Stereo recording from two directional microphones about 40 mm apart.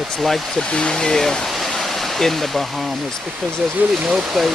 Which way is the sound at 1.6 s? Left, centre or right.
Centre.